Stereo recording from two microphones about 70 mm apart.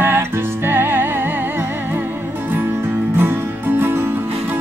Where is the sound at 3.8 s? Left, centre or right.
Right.